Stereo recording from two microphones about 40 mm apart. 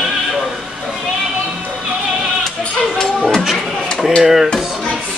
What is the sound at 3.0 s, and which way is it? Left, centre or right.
Music, centre.